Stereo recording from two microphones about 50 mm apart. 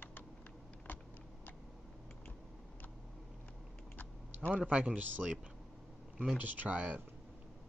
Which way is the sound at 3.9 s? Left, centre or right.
Left.